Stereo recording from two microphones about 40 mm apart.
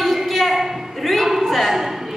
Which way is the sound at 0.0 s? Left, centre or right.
Centre.